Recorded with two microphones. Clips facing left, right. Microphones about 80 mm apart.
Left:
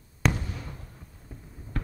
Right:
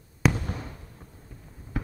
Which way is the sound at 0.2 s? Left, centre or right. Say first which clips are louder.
Right 3 dB; centre.